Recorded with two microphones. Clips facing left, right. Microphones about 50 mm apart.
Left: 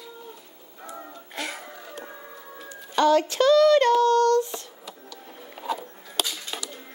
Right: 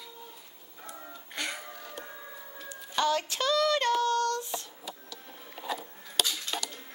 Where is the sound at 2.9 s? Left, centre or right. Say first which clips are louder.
Left 8 dB; left.